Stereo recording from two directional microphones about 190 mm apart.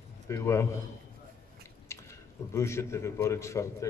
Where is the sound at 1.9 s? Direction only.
15° left (ahead or behind).